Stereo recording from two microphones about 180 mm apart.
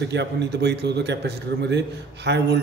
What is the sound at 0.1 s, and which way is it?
A man's voice, 75° right (ahead or behind).